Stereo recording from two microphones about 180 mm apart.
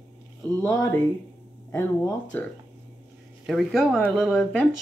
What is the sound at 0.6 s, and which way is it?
Speech, 15° left (ahead or behind).